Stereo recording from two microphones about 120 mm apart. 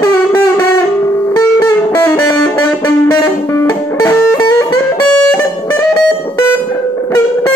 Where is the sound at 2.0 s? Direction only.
20° left (ahead or behind).